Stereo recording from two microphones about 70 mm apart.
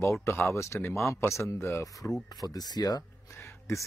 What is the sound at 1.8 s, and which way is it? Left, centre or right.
Speech, left.